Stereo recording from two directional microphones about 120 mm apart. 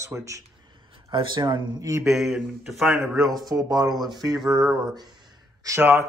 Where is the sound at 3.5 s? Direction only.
30° right (ahead or behind).